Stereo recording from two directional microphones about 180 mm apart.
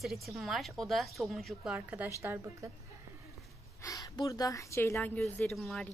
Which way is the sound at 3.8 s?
20° left (ahead or behind).